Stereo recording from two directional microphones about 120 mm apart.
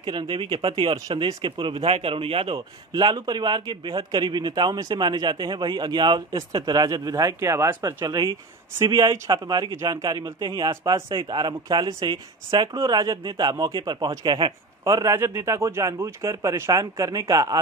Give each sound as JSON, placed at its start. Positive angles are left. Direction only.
{"t": 0.0, "sound": "speech", "side_deg": -40}
{"t": 2.9, "sound": "a man's voice", "side_deg": -35}
{"t": 15.0, "sound": "speech", "side_deg": -20}